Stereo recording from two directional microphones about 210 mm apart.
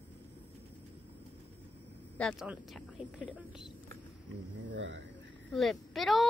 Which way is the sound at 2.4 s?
5° right (ahead or behind).